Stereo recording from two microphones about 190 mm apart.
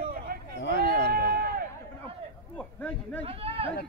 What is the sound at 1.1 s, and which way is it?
Run, 50° right (ahead or behind).